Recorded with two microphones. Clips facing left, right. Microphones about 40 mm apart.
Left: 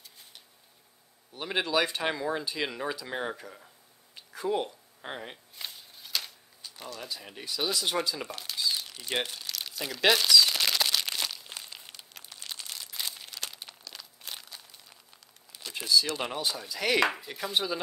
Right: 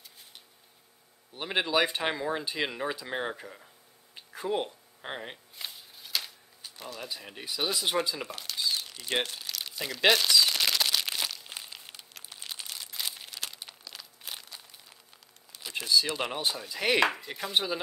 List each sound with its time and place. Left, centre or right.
1.3 s speech: centre
4.1 s a sound: centre
5.7 s shuffling cards: centre
6.8 s speech: centre
8.2 s a sound: centre
9.2 s crumpling: centre
12.3 s crumpling: centre
15.5 s a sound: centre
15.9 s speech: centre
17.0 s speech: centre
17.3 s speech: centre